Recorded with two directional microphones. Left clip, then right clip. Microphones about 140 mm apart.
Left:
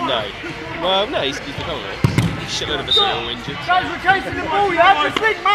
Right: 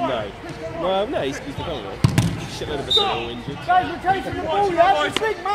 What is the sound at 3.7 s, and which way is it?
Speech, 30° right (ahead or behind).